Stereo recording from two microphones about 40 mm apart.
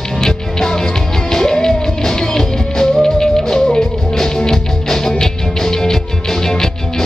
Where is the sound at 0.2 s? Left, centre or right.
Centre.